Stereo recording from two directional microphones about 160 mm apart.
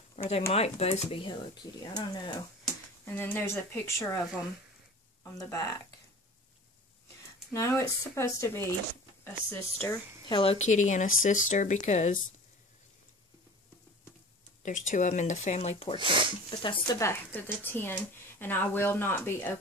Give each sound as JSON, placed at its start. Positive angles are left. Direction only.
{"t": 0.5, "sound": "speech", "side_deg": 40}
{"t": 3.1, "sound": "speech", "side_deg": 15}
{"t": 5.2, "sound": "speech", "side_deg": 20}
{"t": 7.5, "sound": "speech", "side_deg": 20}
{"t": 10.3, "sound": "speech", "side_deg": 35}
{"t": 14.6, "sound": "speech", "side_deg": 50}
{"t": 16.0, "sound": "speech", "side_deg": -30}
{"t": 16.4, "sound": "speech", "side_deg": 30}
{"t": 17.0, "sound": "speech", "side_deg": 15}